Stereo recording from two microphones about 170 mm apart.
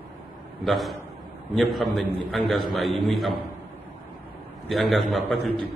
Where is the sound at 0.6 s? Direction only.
Centre (ahead or behind).